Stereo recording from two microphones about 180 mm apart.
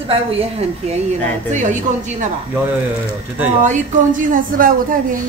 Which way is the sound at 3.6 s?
45° right (ahead or behind).